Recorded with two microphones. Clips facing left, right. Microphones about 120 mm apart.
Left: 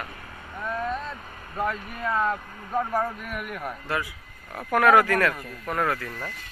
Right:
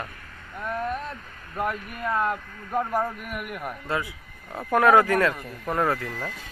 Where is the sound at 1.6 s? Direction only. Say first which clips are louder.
Even; 10° right (ahead or behind).